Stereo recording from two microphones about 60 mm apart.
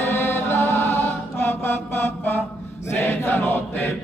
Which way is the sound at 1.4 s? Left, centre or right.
Left.